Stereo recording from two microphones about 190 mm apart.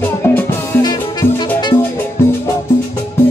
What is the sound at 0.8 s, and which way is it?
Music, 20° left (ahead or behind).